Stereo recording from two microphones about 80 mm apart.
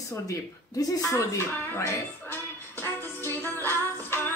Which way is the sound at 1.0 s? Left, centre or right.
Left.